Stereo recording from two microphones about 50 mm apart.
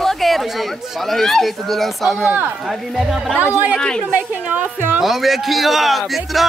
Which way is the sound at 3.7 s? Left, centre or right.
Centre.